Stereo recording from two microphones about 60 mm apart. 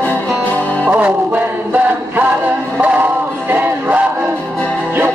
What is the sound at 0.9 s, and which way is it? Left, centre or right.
Music, right.